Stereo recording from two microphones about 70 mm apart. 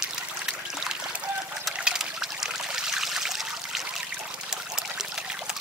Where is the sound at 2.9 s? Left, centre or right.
Centre.